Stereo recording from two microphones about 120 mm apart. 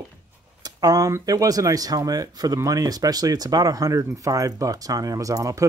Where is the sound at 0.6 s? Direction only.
30° right (ahead or behind).